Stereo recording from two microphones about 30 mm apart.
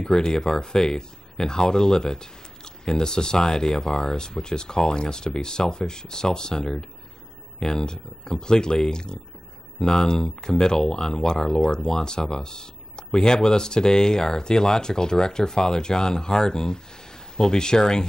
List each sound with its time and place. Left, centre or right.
0.0 s speech: left